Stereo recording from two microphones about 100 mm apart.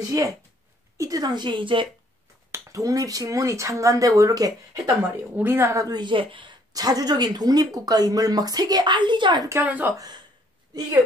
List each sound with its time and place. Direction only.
0.1 s a woman's voice: 35° right (ahead or behind); by 1.9 s 55° right (ahead or behind)
2.5 s speech: 35° right (ahead or behind)
5.3 s speech: 20° right (ahead or behind); by 6.5 s 55° right (ahead or behind)
6.7 s speech: 40° right (ahead or behind)
9.5 s a woman's voice: 15° right (ahead or behind)
9.9 s speech: 45° right (ahead or behind)